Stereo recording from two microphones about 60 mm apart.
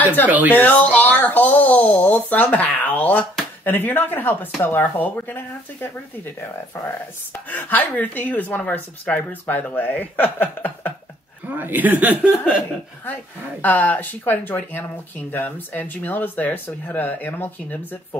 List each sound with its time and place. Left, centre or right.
0.3 s speech: right
0.6 s speech: left
7.3 s speech: left
11.4 s speech: right
13.0 s speech: left